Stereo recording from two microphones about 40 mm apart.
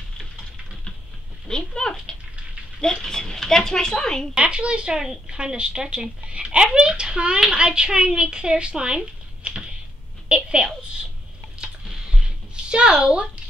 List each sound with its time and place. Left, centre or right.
1.5 s a sound: centre
2.8 s speech: centre
4.4 s a woman's voice: right
10.2 s a sound: right
11.6 s tick-tock: centre
12.6 s a woman's voice: right